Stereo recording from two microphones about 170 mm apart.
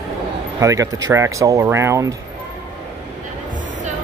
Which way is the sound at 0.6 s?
20° right (ahead or behind).